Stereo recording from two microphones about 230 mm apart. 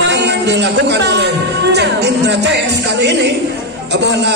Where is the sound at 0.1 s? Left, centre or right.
Right.